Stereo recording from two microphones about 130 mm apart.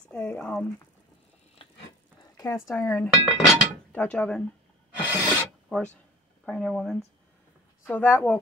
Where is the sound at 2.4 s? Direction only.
20° left (ahead or behind).